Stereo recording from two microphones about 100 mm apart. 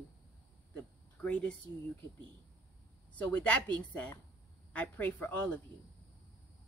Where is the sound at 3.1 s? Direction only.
15° left (ahead or behind).